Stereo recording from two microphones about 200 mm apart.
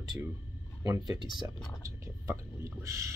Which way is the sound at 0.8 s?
20° right (ahead or behind).